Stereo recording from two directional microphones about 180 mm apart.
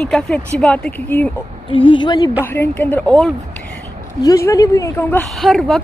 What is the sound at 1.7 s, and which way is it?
Speech, 30° left (ahead or behind).